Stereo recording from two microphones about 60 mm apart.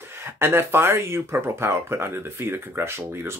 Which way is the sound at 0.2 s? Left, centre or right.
Right.